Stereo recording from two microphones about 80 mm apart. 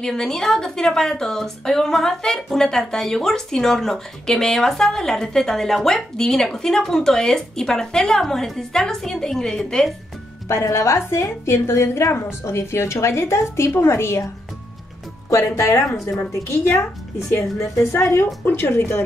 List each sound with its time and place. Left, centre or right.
0.0 s a woman's voice: centre
10.5 s a woman's voice: left